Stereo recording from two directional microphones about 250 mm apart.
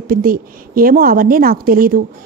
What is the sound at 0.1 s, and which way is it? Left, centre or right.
Speech, right.